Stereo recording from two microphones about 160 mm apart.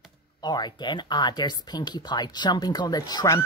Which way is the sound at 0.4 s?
25° left (ahead or behind).